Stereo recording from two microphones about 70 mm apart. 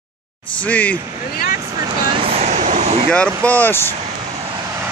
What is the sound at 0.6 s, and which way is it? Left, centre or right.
Speech, left.